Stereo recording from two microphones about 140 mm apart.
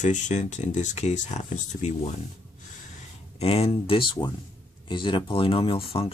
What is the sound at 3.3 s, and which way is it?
Speech, 45° left (ahead or behind).